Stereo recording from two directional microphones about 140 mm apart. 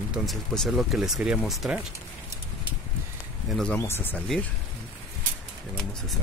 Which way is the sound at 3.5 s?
5° left (ahead or behind).